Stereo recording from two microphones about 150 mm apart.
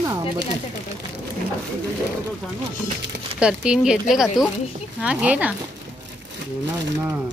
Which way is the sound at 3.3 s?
5° right (ahead or behind).